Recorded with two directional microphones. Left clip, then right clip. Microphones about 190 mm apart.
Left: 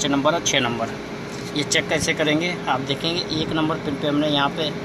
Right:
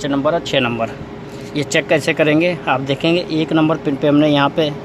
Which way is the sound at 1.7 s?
40° right (ahead or behind).